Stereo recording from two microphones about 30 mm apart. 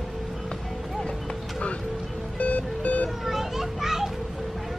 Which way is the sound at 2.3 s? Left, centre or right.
Left.